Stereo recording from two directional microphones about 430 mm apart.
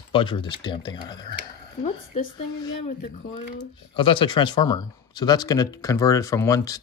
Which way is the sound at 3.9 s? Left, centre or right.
Centre.